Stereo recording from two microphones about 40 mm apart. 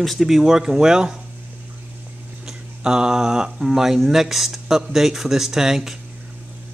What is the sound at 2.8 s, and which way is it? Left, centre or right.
Speech, centre.